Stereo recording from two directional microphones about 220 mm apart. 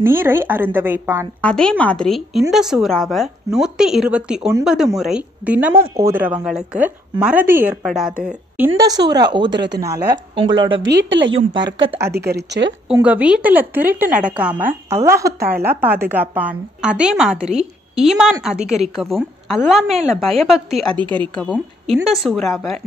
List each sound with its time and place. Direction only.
0.0 s a woman's voice: 10° right (ahead or behind)
1.4 s a woman's voice: 5° left (ahead or behind); by 10.7 s 20° right (ahead or behind)
10.7 s speech: 55° right (ahead or behind)
11.3 s speech: 20° right (ahead or behind)
12.1 s speech: 45° right (ahead or behind)
12.9 s a woman's voice: 5° right (ahead or behind)
21.9 s a woman's voice: centre (ahead or behind)